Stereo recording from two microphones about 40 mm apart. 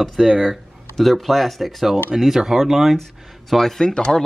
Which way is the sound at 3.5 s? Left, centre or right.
Centre.